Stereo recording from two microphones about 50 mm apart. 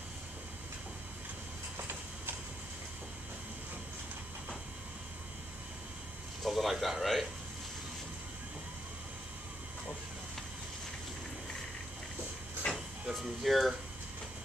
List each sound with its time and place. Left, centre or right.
1.8 s train: right
6.4 s speech: centre
12.6 s a sound: left
13.2 s speech: centre